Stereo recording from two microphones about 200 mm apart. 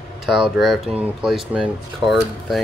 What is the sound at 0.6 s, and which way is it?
Speech, centre (ahead or behind).